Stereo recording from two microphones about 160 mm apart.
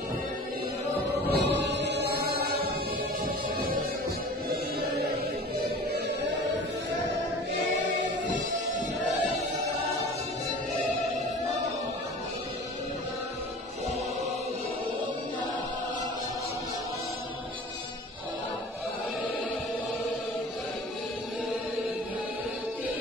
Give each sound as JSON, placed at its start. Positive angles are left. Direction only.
{"t": 1.3, "sound": "chant", "side_deg": -90}